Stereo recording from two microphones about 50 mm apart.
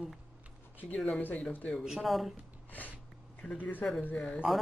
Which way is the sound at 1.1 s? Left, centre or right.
Left.